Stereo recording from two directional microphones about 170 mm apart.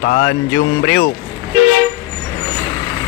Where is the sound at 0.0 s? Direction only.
55° left (ahead or behind).